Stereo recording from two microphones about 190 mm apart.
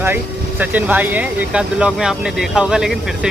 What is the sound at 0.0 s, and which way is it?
Speech, 10° right (ahead or behind).